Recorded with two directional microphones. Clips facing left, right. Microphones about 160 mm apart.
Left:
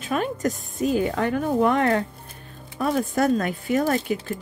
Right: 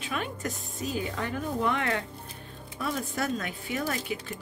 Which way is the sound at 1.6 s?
45° left (ahead or behind).